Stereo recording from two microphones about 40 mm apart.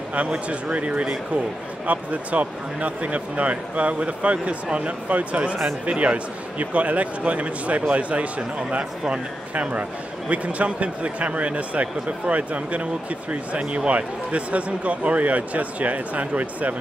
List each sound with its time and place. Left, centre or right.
0.1 s speech: right